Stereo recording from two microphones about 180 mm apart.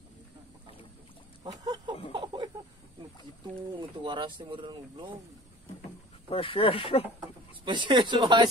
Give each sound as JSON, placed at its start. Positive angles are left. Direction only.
{"t": 1.4, "sound": "a sound", "side_deg": -20}
{"t": 4.0, "sound": "speech", "side_deg": -25}
{"t": 6.3, "sound": "speech", "side_deg": 30}
{"t": 7.6, "sound": "speech", "side_deg": -25}